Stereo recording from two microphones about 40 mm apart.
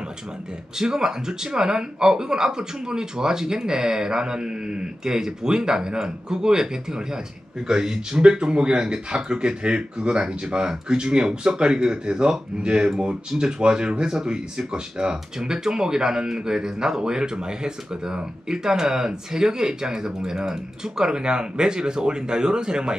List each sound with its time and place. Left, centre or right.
0.7 s speech: centre